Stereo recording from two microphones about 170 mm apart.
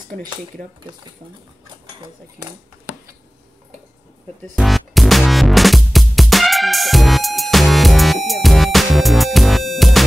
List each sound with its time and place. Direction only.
0.1 s speech: 55° right (ahead or behind)
4.4 s music: centre (ahead or behind)